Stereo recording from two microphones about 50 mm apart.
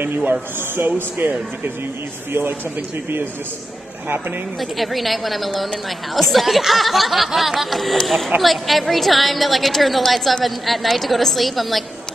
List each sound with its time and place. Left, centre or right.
0.6 s speech: right
4.6 s a woman's voice: centre